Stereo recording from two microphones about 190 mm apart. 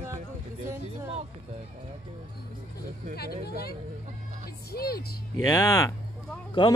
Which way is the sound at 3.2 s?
55° left (ahead or behind).